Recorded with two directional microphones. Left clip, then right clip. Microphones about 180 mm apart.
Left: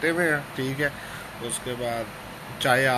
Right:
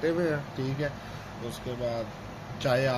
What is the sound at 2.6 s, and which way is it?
Speech, 5° left (ahead or behind).